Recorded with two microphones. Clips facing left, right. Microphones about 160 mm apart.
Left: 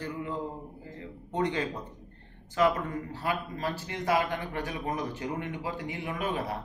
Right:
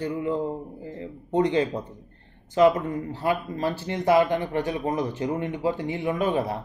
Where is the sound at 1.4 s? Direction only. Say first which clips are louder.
Right 8 dB; 25° right (ahead or behind).